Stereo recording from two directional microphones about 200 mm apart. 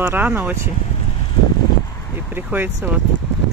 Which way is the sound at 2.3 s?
10° right (ahead or behind).